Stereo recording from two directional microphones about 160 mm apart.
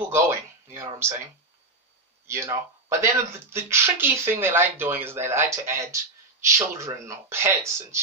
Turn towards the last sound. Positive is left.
turn(degrees=-15)  # may be behind; listen again after turning